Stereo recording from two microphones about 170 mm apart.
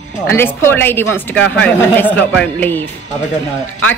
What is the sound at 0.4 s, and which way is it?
A woman's voice, 10° left (ahead or behind).